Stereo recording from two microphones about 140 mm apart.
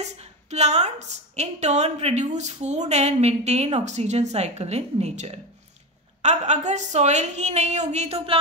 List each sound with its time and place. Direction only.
0.0 s a woman's voice: 50° right (ahead or behind)